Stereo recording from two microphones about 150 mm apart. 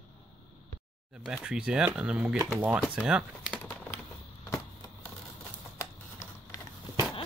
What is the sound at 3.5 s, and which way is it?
Bird, 15° left (ahead or behind).